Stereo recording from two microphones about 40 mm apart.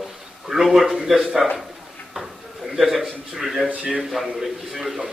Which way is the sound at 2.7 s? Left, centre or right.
Centre.